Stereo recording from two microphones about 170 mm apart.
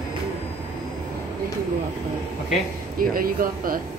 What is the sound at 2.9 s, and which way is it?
Speech, 55° right (ahead or behind).